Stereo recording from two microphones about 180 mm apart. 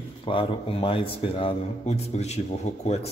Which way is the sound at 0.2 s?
30° left (ahead or behind).